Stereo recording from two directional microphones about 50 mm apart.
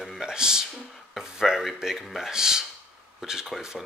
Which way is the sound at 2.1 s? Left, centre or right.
Centre.